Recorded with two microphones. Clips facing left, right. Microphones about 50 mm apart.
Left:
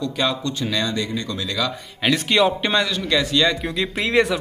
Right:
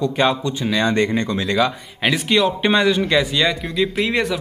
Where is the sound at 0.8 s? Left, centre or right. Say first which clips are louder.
Right 6 dB; right.